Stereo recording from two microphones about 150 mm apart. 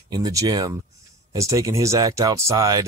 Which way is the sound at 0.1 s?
25° right (ahead or behind).